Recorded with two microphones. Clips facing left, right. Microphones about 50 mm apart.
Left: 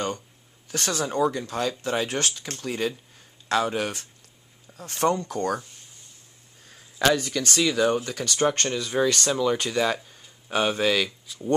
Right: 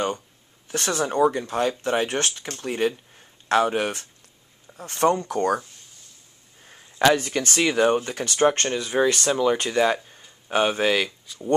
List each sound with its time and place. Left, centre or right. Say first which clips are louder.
0.7 s speech: right 3 dB; right
6.6 s a sound: right 2 dB; right
7.2 s speech: right 2 dB; right; by 11.1 s centre
11.1 s speech: even; centre